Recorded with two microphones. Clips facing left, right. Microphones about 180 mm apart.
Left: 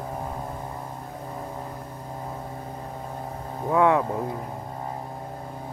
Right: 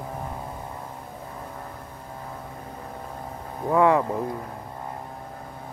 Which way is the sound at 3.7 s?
Centre (ahead or behind).